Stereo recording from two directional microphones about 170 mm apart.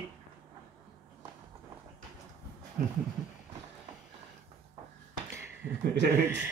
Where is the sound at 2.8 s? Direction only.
55° right (ahead or behind).